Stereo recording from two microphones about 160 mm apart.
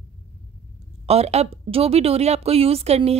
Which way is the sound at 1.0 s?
40° right (ahead or behind).